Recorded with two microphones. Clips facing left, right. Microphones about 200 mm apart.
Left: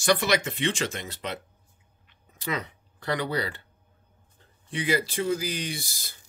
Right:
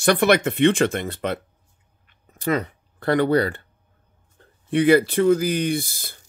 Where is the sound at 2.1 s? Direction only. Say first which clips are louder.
Right 9 dB; 50° right (ahead or behind).